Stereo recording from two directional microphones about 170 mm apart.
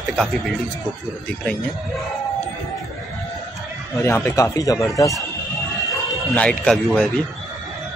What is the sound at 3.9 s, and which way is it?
Speech, 15° left (ahead or behind).